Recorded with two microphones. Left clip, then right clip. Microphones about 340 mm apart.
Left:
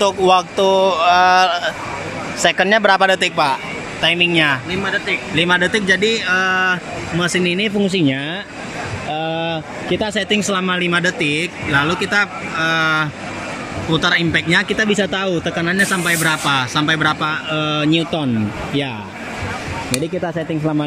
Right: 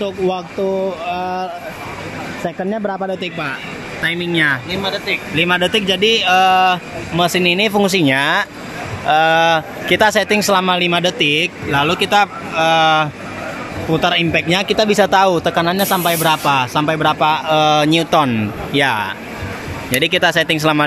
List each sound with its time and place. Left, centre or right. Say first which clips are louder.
0.0 s speech: left 6 dB; left
0.6 s speech: left 5 dB; left
1.0 s speech: left 10 dB; left
2.4 s speech: left 9 dB; left
3.2 s speech: left 7 dB; centre
4.0 s speech: left 2 dB; centre
4.8 s speech: left 1 dB; centre
20.0 s speech: right 13 dB; right